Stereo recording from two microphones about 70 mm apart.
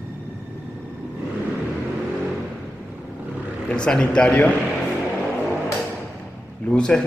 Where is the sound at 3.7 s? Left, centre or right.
Centre.